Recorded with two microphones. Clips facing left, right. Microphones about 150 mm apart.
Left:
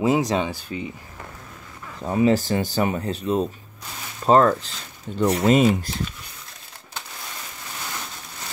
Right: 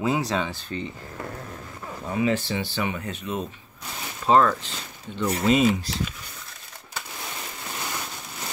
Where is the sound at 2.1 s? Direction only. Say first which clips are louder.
Left 5 dB; 40° left (ahead or behind).